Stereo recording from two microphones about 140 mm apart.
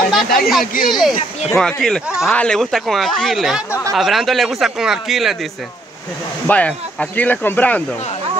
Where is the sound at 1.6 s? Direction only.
5° left (ahead or behind).